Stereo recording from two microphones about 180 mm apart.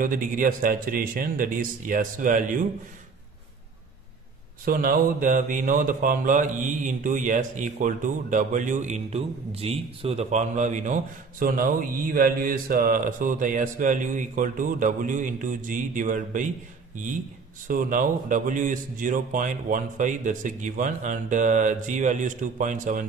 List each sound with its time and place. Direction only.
0.0 s speech: 50° right (ahead or behind)
4.6 s speech: 55° right (ahead or behind)
17.6 s speech: 50° right (ahead or behind)